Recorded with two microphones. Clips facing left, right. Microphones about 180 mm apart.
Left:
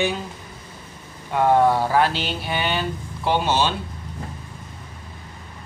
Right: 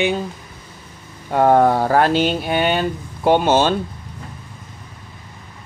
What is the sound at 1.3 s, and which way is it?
Speech, 45° right (ahead or behind).